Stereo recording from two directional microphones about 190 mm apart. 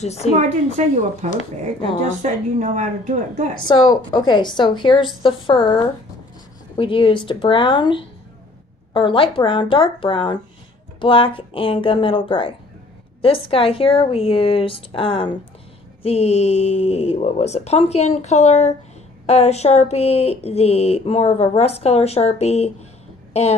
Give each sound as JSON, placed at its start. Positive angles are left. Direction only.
{"t": 0.0, "sound": "speech", "side_deg": 35}
{"t": 0.8, "sound": "speech", "side_deg": -40}
{"t": 3.6, "sound": "a woman's voice", "side_deg": 20}
{"t": 6.8, "sound": "a woman's voice", "side_deg": 25}